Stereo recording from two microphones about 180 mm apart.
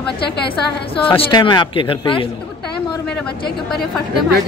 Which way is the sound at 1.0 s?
30° left (ahead or behind).